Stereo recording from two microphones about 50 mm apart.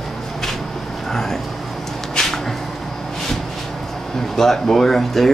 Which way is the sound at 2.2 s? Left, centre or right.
Centre.